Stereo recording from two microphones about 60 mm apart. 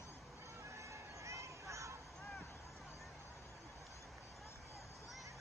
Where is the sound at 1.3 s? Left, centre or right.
Right.